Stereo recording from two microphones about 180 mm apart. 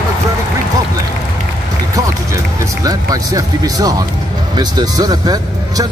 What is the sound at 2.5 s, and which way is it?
Music, 20° right (ahead or behind).